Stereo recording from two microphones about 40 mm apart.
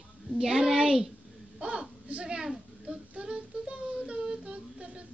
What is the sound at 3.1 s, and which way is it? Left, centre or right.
Music, right.